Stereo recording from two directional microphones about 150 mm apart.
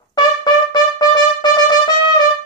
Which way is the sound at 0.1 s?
30° left (ahead or behind).